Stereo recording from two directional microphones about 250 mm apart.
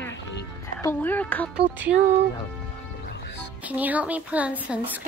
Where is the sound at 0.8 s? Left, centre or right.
Centre.